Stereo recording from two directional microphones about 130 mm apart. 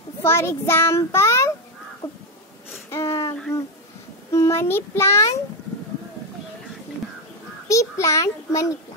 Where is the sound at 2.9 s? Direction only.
20° left (ahead or behind).